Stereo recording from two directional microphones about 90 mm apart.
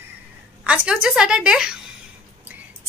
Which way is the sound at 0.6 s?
10° right (ahead or behind).